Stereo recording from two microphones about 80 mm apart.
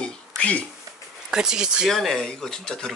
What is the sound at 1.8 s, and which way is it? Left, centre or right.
Speech, centre.